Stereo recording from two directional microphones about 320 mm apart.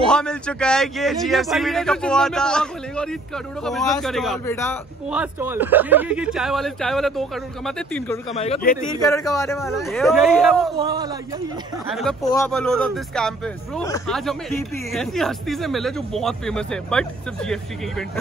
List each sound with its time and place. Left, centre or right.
0.1 s speech: centre
5.1 s speech: centre
8.4 s speech: centre
10.8 s a man's voice: centre
11.9 s speech: centre